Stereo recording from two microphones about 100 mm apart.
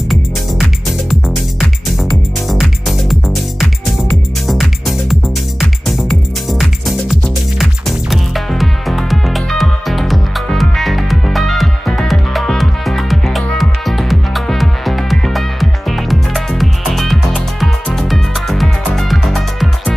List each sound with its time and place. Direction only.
0.8 s music: 5° left (ahead or behind)